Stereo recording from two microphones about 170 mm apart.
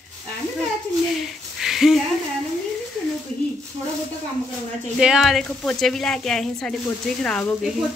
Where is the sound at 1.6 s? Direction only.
Centre (ahead or behind).